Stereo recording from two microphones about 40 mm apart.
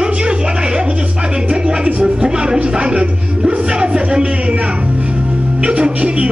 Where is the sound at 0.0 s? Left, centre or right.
Right.